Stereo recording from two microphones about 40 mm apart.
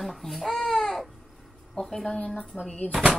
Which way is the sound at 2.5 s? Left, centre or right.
Centre.